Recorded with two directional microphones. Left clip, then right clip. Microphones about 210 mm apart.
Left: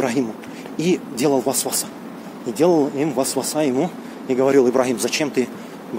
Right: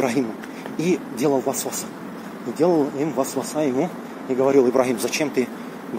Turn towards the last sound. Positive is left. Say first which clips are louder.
# left 2 dB
turn(degrees=15)  # may be behind; listen again after turning